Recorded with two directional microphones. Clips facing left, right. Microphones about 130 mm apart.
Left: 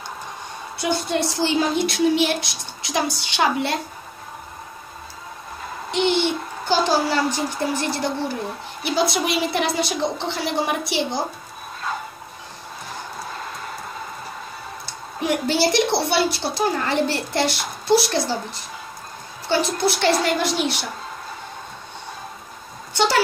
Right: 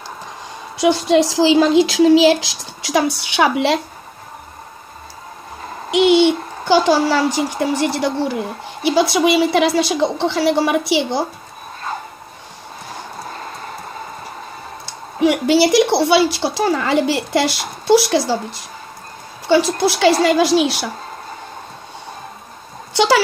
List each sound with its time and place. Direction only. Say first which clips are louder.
0.7 s speech: right 9 dB; 90° right
5.9 s a child's voice: right 8 dB; 90° right; by 8.4 s 70° right (ahead or behind)
8.8 s a woman's voice: right 7 dB; 80° right
15.1 s a woman's voice: right 7 dB; 85° right
22.9 s speech: right 5 dB; 90° right